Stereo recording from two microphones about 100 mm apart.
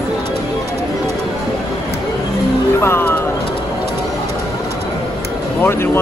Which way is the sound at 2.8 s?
25° left (ahead or behind).